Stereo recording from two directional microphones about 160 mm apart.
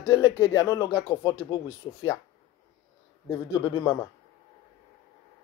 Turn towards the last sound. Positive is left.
turn(degrees=25)  # may be behind; listen again after turning